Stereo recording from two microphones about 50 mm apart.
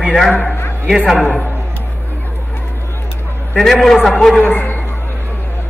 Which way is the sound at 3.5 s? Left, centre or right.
Centre.